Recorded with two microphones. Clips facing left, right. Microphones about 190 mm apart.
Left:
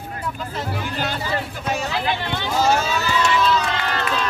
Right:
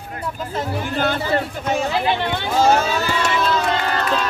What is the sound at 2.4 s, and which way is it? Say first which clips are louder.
Run: right 3 dB; 55° right (ahead or behind).